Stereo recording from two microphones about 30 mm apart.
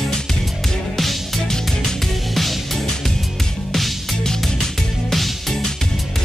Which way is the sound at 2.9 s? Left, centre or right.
Centre.